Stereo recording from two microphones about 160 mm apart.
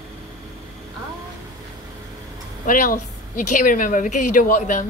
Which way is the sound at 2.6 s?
60° left (ahead or behind).